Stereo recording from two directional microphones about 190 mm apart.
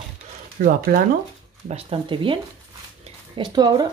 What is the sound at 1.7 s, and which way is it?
Speech, 30° right (ahead or behind).